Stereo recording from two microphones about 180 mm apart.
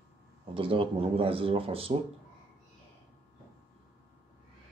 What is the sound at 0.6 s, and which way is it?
Speech, 30° right (ahead or behind).